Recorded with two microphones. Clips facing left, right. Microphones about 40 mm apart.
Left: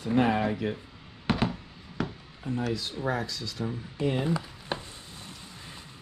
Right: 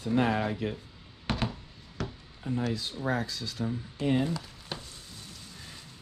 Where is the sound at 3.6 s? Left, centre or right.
Centre.